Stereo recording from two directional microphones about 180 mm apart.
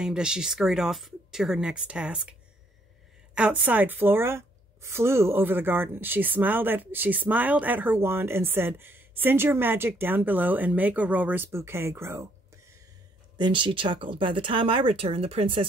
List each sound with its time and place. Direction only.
0.0 s speech: 5° right (ahead or behind)
3.3 s a woman's voice: 10° right (ahead or behind)
13.4 s speech: 25° right (ahead or behind)